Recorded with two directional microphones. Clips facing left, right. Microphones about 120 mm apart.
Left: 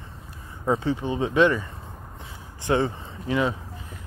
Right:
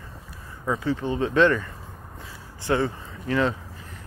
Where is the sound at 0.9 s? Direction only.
15° left (ahead or behind).